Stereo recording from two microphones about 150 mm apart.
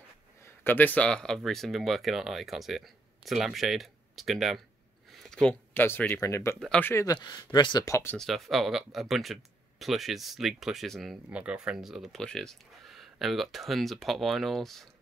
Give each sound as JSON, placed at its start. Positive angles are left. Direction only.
{"t": 0.7, "sound": "speech", "side_deg": 10}
{"t": 7.2, "sound": "speech", "side_deg": 30}
{"t": 8.2, "sound": "speech", "side_deg": 0}